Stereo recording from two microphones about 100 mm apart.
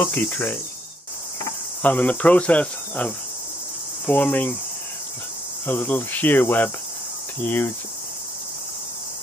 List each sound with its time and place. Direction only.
0.0 s speech: 20° left (ahead or behind)
1.8 s speech: 15° left (ahead or behind)
5.7 s speech: 20° left (ahead or behind)